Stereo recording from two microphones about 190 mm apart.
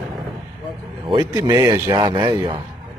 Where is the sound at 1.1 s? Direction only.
15° right (ahead or behind).